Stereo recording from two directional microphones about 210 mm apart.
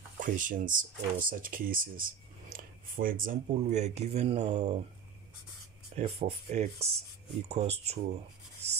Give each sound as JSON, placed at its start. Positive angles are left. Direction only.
{"t": 0.2, "sound": "speech", "side_deg": -40}
{"t": 5.9, "sound": "speech", "side_deg": -30}